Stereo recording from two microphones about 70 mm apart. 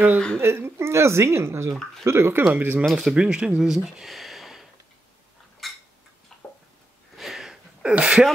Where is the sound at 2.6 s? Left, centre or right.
Right.